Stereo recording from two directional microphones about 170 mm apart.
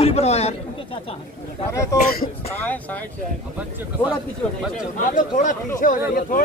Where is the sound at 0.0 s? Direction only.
35° left (ahead or behind).